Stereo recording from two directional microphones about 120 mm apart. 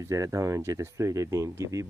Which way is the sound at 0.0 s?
25° right (ahead or behind).